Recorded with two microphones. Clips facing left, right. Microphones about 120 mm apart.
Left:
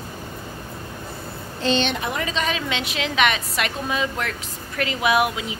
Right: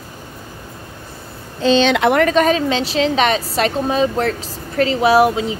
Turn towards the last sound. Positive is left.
turn(degrees=-35)  # may be behind; listen again after turning